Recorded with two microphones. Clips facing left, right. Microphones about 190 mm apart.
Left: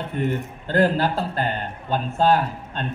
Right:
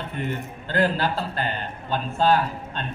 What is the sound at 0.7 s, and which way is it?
Speech, 45° left (ahead or behind).